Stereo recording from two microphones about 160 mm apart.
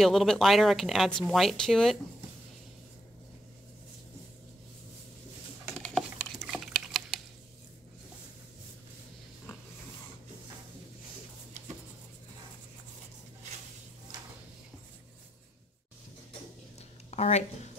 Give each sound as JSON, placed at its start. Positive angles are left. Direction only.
{"t": 0.0, "sound": "speech", "side_deg": 0}
{"t": 5.7, "sound": "typing", "side_deg": 5}
{"t": 17.1, "sound": "a sound", "side_deg": 45}